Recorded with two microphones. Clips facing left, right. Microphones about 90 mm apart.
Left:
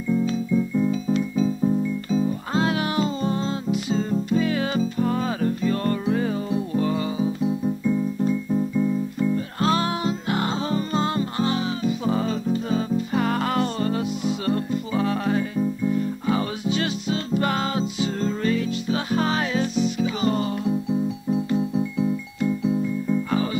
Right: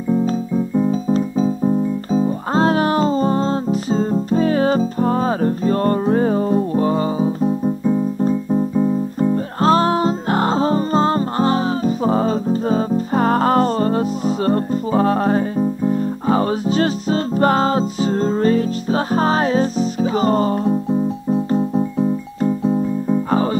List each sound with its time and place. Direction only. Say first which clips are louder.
0.1 s music: right 4 dB; 40° right (ahead or behind)